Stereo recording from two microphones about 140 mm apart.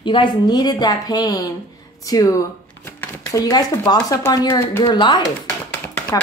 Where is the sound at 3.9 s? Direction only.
25° left (ahead or behind).